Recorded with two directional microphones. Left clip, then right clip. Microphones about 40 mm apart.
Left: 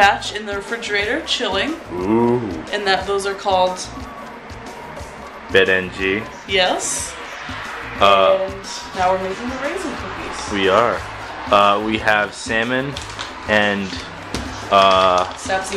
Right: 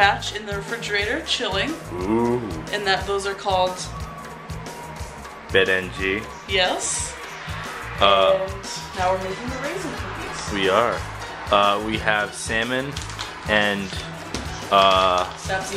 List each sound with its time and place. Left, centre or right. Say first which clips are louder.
0.2 s speech: left 4 dB; left
0.7 s speech: left 3 dB; centre
5.5 s speech: left 4 dB; centre
6.5 s speech: left 4 dB; centre
8.0 s speech: left 4 dB; centre
10.6 s speech: left 4 dB; centre
11.8 s speech: left 5 dB; left
12.6 s speech: left 4 dB; centre
14.3 s music: left 3 dB; centre
15.5 s speech: left 5 dB; left